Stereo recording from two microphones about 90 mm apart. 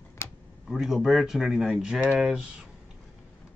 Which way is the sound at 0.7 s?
5° right (ahead or behind).